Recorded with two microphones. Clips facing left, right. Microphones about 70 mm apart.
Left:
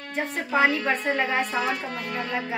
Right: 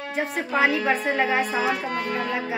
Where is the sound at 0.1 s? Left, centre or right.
Centre.